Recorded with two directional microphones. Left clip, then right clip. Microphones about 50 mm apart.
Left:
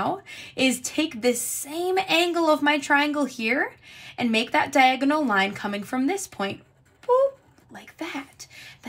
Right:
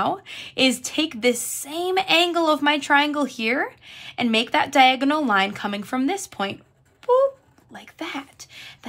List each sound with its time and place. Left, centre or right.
0.0 s a woman's voice: right
7.7 s speech: right